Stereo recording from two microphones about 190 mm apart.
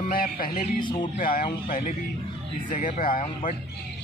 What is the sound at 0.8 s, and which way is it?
Speech, 25° left (ahead or behind).